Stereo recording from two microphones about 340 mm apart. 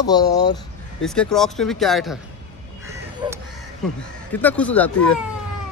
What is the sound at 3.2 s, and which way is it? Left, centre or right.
Speech, centre.